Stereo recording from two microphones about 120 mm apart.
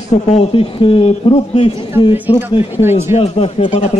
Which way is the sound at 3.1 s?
60° left (ahead or behind).